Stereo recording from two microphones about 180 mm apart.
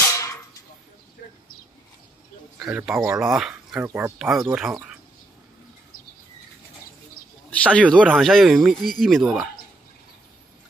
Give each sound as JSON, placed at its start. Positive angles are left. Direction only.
{"t": 0.1, "sound": "a sound", "side_deg": 15}
{"t": 2.6, "sound": "speech", "side_deg": -5}
{"t": 7.5, "sound": "speech", "side_deg": 5}